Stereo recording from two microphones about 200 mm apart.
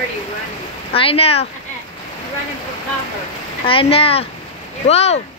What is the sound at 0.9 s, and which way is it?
Speech, 30° left (ahead or behind).